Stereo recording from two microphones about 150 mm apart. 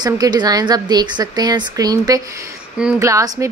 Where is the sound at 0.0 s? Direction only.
25° right (ahead or behind).